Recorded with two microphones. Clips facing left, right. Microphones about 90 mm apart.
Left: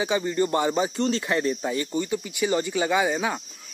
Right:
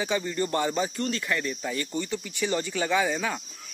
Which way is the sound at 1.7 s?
15° left (ahead or behind).